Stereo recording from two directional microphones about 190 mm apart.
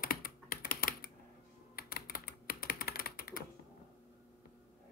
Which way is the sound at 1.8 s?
50° left (ahead or behind).